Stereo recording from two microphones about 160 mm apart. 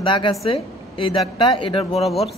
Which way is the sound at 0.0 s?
30° left (ahead or behind).